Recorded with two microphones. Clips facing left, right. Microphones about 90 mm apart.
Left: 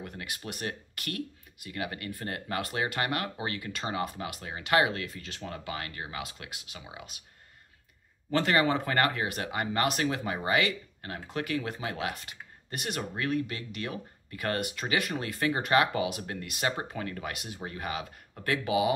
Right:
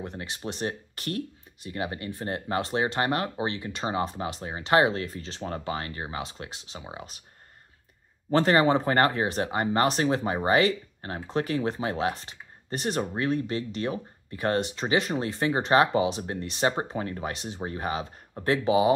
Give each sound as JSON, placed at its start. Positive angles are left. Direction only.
{"t": 0.0, "sound": "speech", "side_deg": -30}
{"t": 8.3, "sound": "speech", "side_deg": -35}